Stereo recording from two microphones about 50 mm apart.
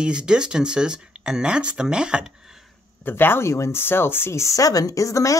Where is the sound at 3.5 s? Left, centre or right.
Left.